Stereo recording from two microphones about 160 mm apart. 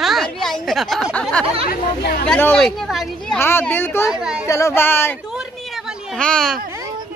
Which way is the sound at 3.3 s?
15° left (ahead or behind).